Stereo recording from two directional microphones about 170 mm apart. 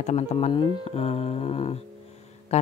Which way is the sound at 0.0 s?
40° left (ahead or behind).